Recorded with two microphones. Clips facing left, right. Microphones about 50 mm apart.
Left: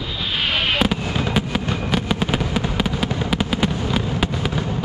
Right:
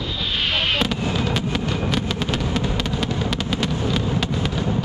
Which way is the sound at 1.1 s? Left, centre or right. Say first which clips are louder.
Left 1 dB; centre.